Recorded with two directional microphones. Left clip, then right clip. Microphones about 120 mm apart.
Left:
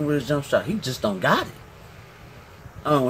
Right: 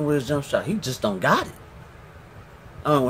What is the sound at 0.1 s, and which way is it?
Speech, 25° right (ahead or behind).